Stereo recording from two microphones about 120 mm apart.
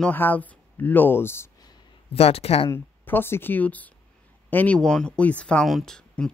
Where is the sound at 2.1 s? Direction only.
55° left (ahead or behind).